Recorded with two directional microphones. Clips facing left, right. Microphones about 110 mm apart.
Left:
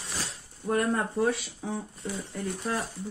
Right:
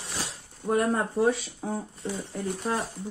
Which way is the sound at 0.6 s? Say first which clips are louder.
Right 2 dB; 60° right (ahead or behind).